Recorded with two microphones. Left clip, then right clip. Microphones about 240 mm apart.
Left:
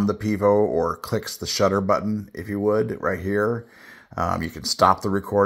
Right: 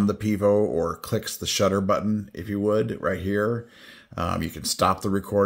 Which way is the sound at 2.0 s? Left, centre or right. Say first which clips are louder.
Even; right.